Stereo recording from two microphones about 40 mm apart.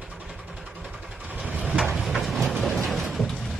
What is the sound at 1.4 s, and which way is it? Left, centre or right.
Vehicle, right.